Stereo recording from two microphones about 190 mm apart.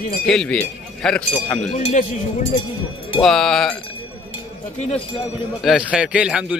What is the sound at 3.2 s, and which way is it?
Speech, centre (ahead or behind).